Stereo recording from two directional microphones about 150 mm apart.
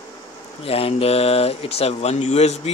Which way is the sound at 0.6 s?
40° left (ahead or behind).